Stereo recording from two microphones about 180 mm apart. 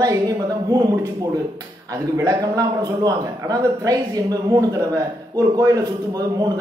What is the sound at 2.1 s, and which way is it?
A man's voice, 20° right (ahead or behind).